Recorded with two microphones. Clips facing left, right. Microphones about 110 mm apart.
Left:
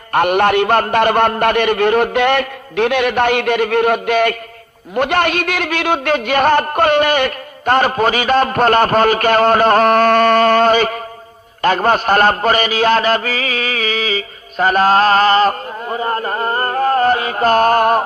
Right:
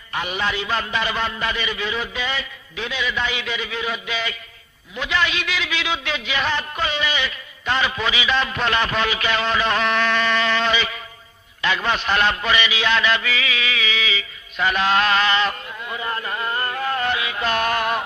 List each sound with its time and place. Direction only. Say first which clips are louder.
0.1 s a man's voice: left 12 dB; 60° left (ahead or behind)
11.6 s mantra: left 9 dB; 45° left (ahead or behind)